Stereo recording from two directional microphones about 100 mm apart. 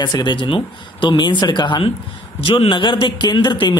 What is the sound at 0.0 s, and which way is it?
A man's voice, 50° left (ahead or behind).